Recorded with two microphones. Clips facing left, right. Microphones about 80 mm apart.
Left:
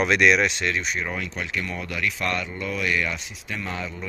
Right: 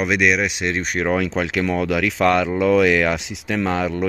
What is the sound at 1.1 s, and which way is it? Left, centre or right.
Speech, right.